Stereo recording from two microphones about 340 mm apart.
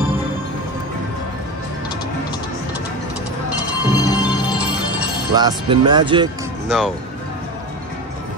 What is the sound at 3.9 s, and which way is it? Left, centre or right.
Music, centre.